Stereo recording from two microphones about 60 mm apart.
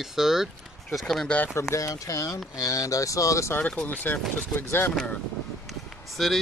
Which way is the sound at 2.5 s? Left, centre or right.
Left.